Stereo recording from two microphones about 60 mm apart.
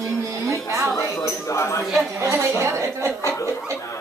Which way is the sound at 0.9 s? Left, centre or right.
Left.